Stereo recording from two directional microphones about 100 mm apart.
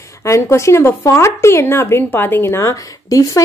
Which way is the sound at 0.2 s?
30° left (ahead or behind).